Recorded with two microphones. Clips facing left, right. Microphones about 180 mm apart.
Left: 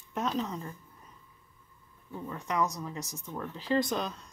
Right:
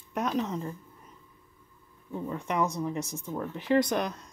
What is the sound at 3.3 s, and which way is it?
Speech, 15° right (ahead or behind).